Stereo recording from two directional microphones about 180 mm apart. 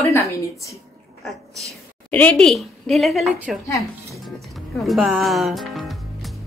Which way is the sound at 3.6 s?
15° left (ahead or behind).